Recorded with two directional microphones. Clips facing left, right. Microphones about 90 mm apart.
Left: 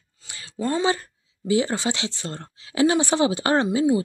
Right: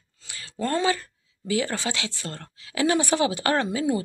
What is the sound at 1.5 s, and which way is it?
Speech, 20° left (ahead or behind).